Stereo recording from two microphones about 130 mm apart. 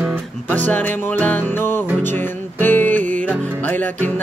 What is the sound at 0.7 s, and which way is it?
Music, 15° left (ahead or behind).